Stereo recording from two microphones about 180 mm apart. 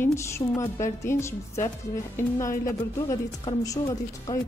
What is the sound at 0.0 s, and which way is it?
A woman's voice, 15° left (ahead or behind).